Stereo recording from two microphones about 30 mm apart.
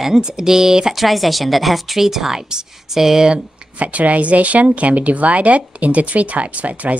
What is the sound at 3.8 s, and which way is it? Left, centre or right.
Speech, right.